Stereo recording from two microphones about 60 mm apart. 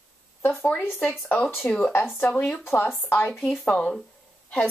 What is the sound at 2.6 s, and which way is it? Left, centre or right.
Speech, left.